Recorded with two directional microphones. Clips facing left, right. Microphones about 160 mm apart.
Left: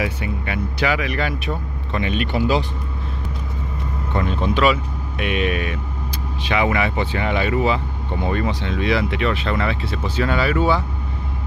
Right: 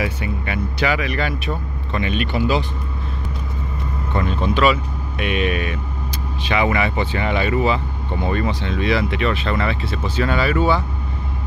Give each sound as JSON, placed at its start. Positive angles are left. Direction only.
{"t": 0.0, "sound": "speech", "side_deg": 5}
{"t": 2.0, "sound": "speech", "side_deg": 35}
{"t": 4.1, "sound": "speech", "side_deg": 15}